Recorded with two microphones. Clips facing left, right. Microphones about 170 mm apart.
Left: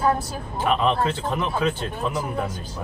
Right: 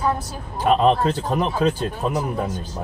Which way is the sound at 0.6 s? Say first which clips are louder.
Right 4 dB; 40° right (ahead or behind).